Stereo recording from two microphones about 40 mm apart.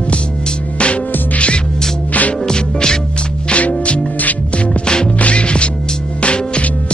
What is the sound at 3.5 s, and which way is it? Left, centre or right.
Music, left.